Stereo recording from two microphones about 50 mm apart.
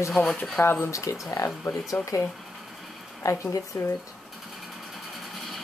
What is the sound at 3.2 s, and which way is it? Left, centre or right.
Speech, left.